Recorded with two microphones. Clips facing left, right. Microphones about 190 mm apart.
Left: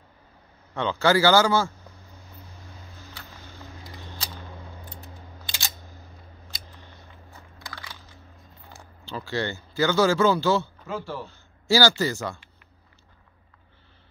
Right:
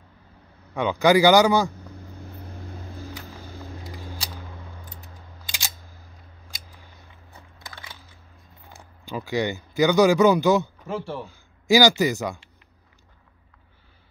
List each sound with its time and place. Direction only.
0.7 s speech: 15° right (ahead or behind)
3.8 s camera: 10° right (ahead or behind)
6.5 s scissors: 10° right (ahead or behind)
7.5 s crushing: 20° right (ahead or behind)
9.0 s speech: 15° right (ahead or behind)